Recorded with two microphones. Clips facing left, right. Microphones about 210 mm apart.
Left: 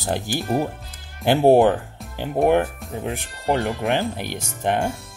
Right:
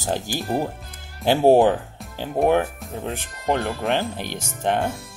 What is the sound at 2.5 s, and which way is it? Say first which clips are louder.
Speech: left 1 dB; 15° left (ahead or behind).